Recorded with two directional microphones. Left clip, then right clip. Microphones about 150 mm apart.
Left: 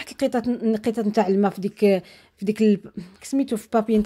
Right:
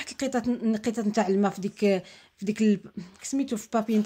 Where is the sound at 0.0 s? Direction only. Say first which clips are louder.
Left 5 dB; 20° left (ahead or behind).